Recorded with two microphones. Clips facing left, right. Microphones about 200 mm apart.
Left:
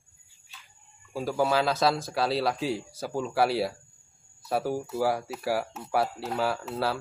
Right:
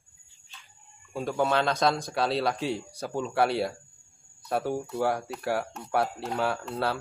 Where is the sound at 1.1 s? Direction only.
5° left (ahead or behind).